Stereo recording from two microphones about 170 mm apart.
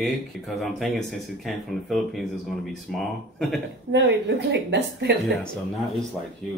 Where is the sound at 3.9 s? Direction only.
90° right.